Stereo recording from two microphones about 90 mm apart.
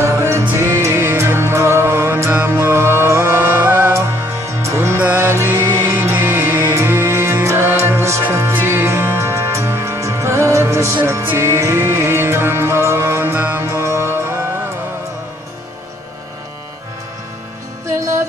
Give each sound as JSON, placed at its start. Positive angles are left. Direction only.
{"t": 0.0, "sound": "music", "side_deg": -30}
{"t": 17.8, "sound": "music", "side_deg": -35}